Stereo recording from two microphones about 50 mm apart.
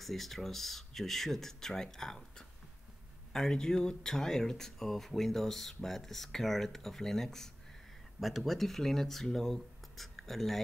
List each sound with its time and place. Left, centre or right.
0.0 s speech: centre